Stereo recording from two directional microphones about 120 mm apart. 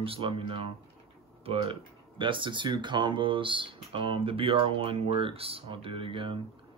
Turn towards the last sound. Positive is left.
turn(degrees=-45)  # may be behind; listen again after turning